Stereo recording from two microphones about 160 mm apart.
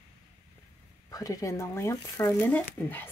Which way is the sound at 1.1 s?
20° left (ahead or behind).